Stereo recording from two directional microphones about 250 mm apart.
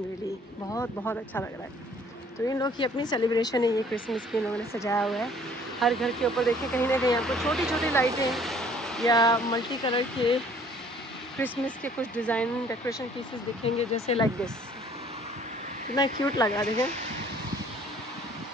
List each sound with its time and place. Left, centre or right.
0.7 s speech: centre
4.3 s speech: centre
5.0 s speech: centre
9.0 s speech: centre
11.3 s speech: centre
13.7 s speech: left
16.0 s speech: centre